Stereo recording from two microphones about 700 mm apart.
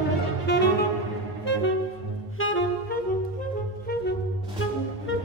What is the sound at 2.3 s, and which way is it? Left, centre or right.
Saxophone, centre.